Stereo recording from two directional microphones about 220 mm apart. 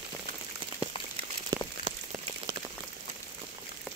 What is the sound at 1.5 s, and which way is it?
Rain on surface, 15° right (ahead or behind).